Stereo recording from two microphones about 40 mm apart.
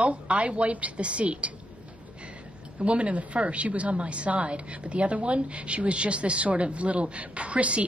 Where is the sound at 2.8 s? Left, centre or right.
Right.